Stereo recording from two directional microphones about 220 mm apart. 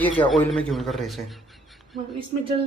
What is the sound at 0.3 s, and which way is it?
Speech, centre (ahead or behind).